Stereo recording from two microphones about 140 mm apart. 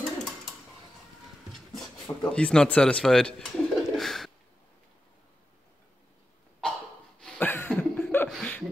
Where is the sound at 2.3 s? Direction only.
5° left (ahead or behind).